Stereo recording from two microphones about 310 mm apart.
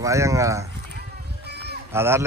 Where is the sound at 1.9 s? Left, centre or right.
Centre.